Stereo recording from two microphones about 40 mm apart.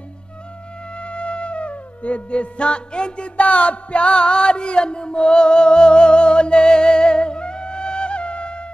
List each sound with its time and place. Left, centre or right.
0.9 s music: left